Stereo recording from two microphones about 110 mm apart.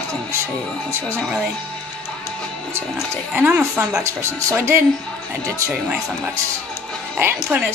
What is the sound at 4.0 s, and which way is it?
Speech, 25° right (ahead or behind).